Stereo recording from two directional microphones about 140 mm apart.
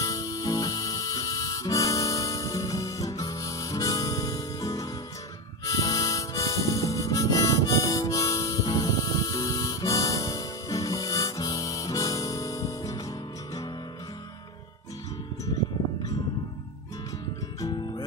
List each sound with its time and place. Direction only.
0.0 s harmonica: 25° left (ahead or behind)